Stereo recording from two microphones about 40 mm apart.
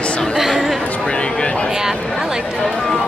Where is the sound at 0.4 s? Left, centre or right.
Centre.